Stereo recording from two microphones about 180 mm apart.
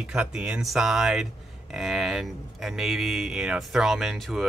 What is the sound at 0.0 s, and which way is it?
Speech, 5° right (ahead or behind).